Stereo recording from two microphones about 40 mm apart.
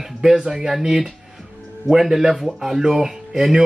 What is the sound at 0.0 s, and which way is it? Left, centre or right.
Speech, centre.